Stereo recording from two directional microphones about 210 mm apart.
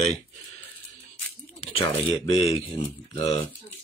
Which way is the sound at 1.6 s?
25° left (ahead or behind).